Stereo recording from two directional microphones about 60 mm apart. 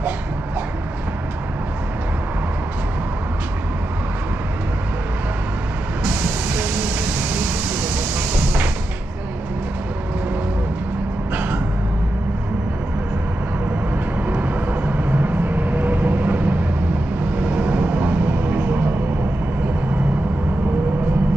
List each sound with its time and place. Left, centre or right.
6.0 s vehicle: right
11.3 s music: right
14.2 s vehicle: right